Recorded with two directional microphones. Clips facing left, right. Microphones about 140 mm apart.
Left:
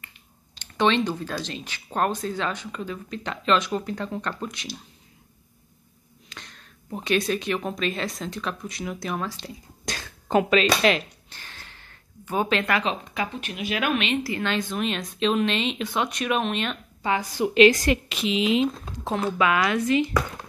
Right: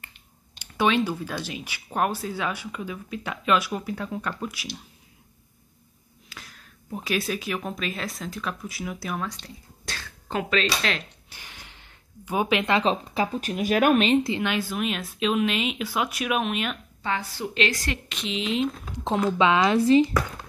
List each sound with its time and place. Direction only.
0.6 s speech: 10° right (ahead or behind)
6.2 s speech: 5° right (ahead or behind)
9.9 s a sound: 15° left (ahead or behind)
10.3 s a woman's voice: 10° left (ahead or behind)
11.2 s a sound: 15° right (ahead or behind)
12.7 s speech: 35° right (ahead or behind)
14.2 s speech: 15° right (ahead or behind)
17.0 s a woman's voice: 15° left (ahead or behind)
18.0 s speech: 5° left (ahead or behind)
19.3 s speech: 25° right (ahead or behind)